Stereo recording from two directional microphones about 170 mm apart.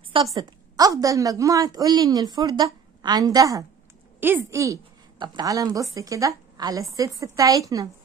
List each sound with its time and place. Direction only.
0.1 s a woman's voice: 25° right (ahead or behind)